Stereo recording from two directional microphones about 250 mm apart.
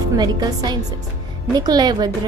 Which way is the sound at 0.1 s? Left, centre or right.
Centre.